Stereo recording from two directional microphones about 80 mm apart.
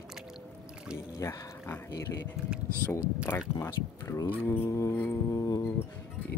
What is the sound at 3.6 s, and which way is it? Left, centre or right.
Speech, left.